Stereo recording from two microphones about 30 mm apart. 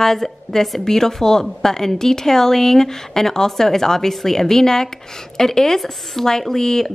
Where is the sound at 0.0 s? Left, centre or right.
Centre.